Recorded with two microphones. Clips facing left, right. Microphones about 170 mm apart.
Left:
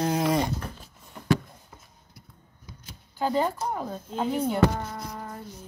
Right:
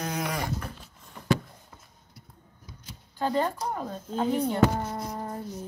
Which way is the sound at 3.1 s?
10° left (ahead or behind).